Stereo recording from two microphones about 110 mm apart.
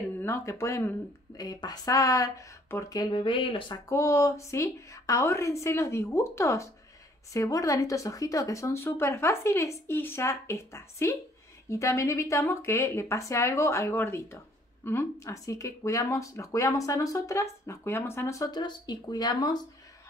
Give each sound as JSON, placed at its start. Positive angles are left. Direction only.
{"t": 0.2, "sound": "speech", "side_deg": 25}
{"t": 3.9, "sound": "speech", "side_deg": 30}